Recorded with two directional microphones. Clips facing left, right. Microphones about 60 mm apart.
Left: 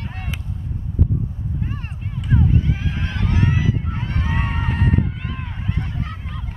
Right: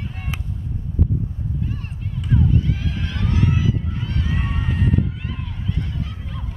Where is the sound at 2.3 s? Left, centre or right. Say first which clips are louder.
Even; left.